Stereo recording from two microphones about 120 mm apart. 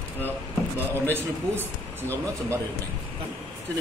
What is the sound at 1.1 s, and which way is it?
Speech, 20° right (ahead or behind).